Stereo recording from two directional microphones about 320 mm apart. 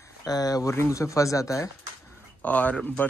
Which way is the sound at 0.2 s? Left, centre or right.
Centre.